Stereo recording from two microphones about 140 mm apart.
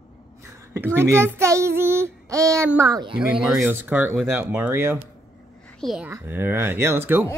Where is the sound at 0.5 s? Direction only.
20° right (ahead or behind).